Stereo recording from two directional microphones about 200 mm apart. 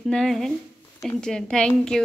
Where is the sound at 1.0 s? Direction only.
5° left (ahead or behind).